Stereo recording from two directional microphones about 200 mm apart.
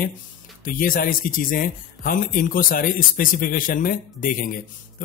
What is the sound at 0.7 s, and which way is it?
Speech, 45° left (ahead or behind).